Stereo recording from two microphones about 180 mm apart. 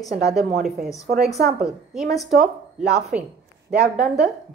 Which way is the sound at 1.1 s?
50° right (ahead or behind).